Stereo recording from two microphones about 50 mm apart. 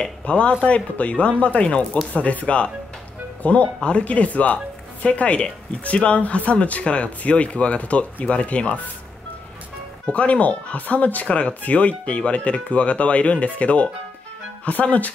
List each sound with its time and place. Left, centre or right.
0.2 s speech: left
10.0 s speech: left